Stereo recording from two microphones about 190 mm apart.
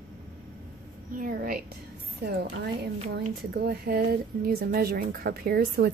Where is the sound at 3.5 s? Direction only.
55° right (ahead or behind).